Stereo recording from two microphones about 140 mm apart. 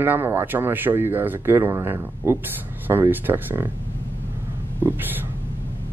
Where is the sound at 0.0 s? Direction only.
15° right (ahead or behind).